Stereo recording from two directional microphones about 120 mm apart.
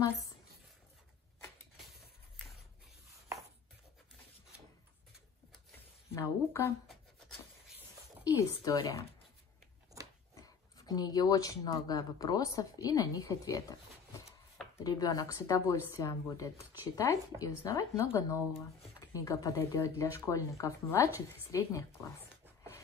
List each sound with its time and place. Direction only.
6.1 s a woman's voice: 20° left (ahead or behind)
6.9 s rub: centre (ahead or behind)
8.3 s a woman's voice: 25° left (ahead or behind)
10.3 s a woman's voice: 30° left (ahead or behind)